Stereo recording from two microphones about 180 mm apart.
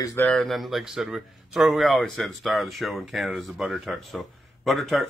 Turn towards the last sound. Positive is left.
turn(degrees=0)  # may be behind; listen again after turning